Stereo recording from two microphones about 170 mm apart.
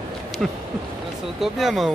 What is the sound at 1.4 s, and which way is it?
Speech, centre (ahead or behind).